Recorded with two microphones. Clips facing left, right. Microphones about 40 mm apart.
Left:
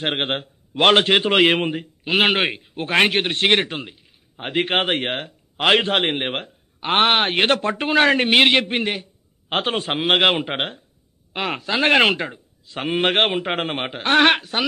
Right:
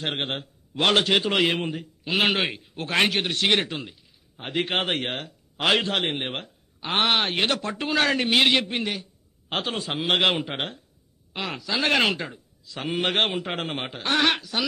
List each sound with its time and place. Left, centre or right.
0.0 s a man's voice: left